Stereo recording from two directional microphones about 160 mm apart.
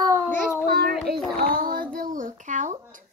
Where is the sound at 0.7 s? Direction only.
70° right (ahead or behind); by 2.8 s 50° right (ahead or behind).